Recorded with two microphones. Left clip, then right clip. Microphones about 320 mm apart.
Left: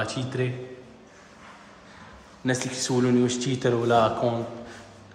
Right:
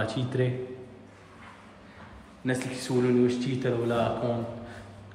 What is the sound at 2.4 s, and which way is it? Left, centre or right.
Speech, centre.